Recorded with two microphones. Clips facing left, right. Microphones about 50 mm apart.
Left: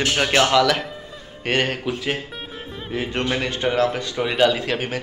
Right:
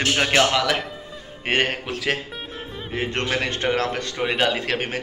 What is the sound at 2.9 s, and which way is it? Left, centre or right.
A man's voice, right.